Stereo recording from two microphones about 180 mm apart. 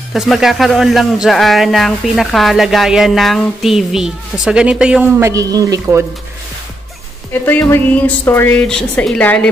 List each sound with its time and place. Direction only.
0.1 s speech: centre (ahead or behind)
5.2 s speech: 20° right (ahead or behind)
7.4 s a woman's voice: 10° left (ahead or behind)